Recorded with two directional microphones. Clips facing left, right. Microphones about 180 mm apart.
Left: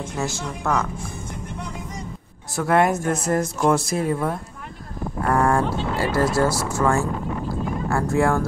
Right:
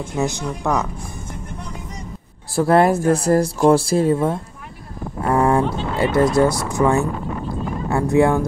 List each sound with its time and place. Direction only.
0.1 s speech: 15° right (ahead or behind)
2.5 s speech: 30° right (ahead or behind)